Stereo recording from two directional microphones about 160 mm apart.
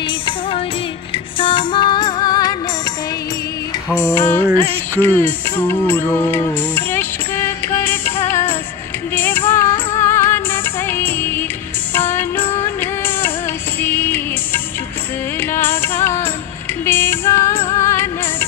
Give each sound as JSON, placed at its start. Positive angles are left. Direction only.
{"t": 1.4, "sound": "music", "side_deg": 30}
{"t": 4.1, "sound": "music", "side_deg": 15}